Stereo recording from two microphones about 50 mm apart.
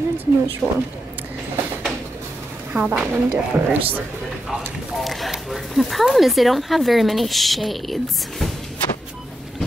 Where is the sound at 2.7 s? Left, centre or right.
Right.